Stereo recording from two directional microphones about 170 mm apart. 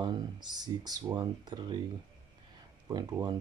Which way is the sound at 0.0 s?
25° right (ahead or behind).